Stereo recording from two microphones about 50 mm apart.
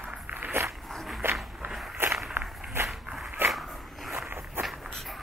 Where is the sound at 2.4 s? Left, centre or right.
Right.